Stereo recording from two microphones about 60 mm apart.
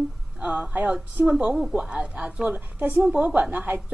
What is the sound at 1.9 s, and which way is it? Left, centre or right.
A woman's voice, centre.